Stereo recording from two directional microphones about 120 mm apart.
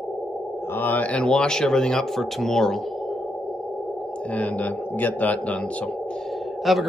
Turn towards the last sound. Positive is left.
turn(degrees=0)  # may be behind; listen again after turning